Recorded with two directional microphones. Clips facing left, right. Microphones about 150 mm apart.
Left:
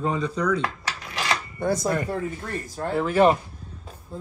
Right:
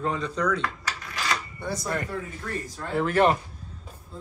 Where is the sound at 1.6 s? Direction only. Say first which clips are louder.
Left 8 dB; 45° left (ahead or behind).